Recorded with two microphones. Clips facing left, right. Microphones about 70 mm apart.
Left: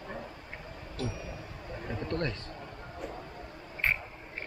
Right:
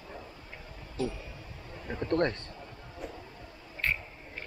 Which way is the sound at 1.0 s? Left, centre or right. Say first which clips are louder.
Right 3 dB; left.